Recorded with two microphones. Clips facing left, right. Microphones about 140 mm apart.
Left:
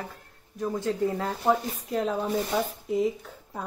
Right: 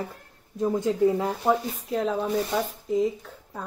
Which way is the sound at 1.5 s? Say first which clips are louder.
Right 1 dB; centre (ahead or behind).